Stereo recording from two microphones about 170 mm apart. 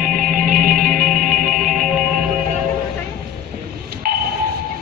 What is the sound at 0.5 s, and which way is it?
Music, 55° right (ahead or behind).